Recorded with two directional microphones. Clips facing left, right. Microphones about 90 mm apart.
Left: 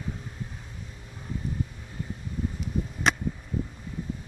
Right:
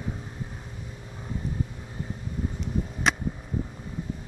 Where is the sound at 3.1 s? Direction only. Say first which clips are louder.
Even; centre (ahead or behind).